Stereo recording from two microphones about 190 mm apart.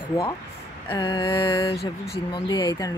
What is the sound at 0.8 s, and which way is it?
Mantra, 25° left (ahead or behind).